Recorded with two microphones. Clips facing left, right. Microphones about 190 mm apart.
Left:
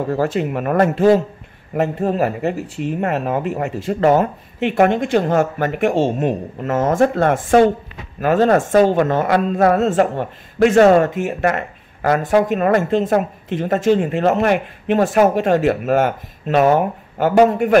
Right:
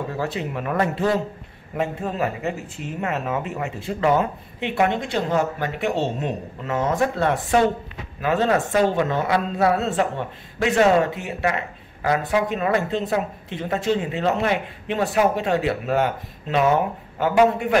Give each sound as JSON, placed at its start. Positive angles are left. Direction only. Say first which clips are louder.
{"t": 0.1, "sound": "speech", "louder": "left 8 dB", "side_deg": 50}